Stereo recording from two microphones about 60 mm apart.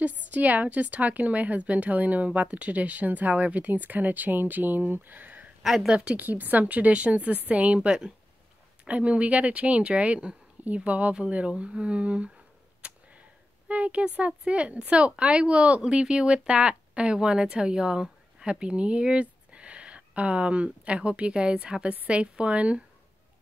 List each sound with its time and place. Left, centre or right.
0.0 s speech: right
6.2 s speech: right
13.7 s speech: right